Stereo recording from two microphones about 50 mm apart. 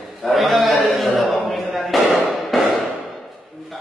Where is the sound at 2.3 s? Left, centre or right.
Centre.